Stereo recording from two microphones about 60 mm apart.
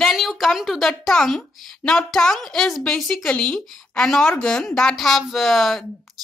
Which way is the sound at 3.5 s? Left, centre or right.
Centre.